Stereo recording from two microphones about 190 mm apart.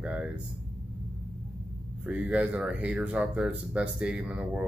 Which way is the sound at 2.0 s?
5° right (ahead or behind).